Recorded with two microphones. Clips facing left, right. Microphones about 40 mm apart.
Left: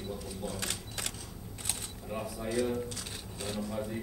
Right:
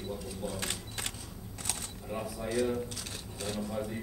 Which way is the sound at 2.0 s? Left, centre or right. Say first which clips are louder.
Even; centre.